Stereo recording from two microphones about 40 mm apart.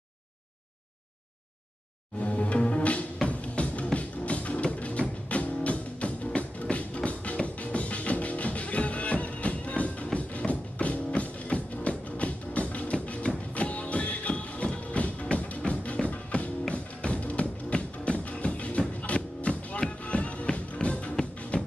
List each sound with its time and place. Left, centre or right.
2.1 s music: left